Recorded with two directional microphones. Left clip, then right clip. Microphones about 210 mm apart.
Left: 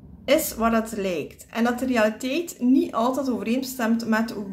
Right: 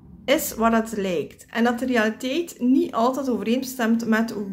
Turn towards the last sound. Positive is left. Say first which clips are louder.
# right 1 dB
turn(degrees=-20)  # may be behind; listen again after turning